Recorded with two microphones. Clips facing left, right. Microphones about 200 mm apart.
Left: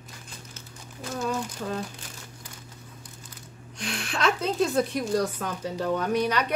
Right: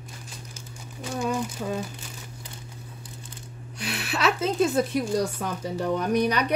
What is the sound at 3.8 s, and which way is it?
A woman's voice, 5° right (ahead or behind).